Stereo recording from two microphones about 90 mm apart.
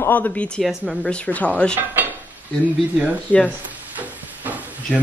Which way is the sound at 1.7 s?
20° right (ahead or behind).